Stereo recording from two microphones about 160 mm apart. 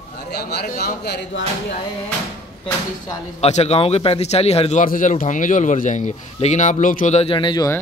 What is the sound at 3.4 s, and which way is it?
A man's voice, 40° left (ahead or behind).